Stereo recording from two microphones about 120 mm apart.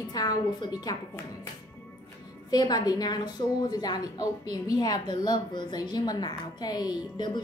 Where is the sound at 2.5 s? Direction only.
35° left (ahead or behind).